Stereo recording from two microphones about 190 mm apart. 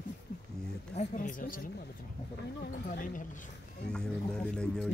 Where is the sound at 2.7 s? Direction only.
50° left (ahead or behind).